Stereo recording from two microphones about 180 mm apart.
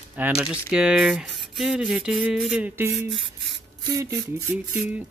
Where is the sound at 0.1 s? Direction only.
10° right (ahead or behind).